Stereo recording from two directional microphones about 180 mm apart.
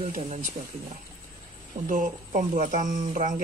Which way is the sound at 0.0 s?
45° right (ahead or behind).